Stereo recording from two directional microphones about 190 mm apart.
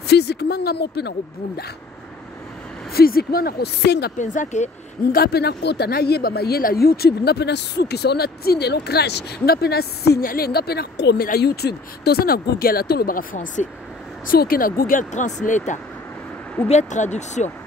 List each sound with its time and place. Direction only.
0.0 s speech: 60° left (ahead or behind)
2.9 s speech: 55° left (ahead or behind)
4.2 s speech: 40° left (ahead or behind)
5.1 s speech: 55° left (ahead or behind); by 17.5 s 40° left (ahead or behind)